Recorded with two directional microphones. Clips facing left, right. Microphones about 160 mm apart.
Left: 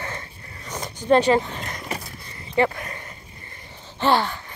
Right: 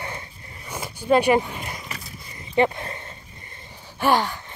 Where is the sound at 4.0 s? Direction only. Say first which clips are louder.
Even; 10° right (ahead or behind).